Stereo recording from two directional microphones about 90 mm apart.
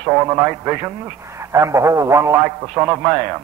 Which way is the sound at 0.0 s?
25° right (ahead or behind).